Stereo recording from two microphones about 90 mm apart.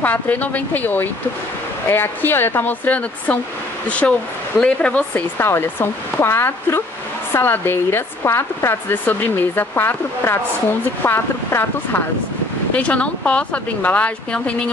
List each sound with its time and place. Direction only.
0.0 s speech: 15° left (ahead or behind)
12.7 s speech: 15° left (ahead or behind)